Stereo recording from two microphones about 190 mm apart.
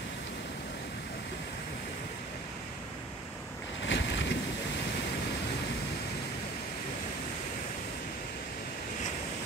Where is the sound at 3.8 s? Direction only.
70° left (ahead or behind).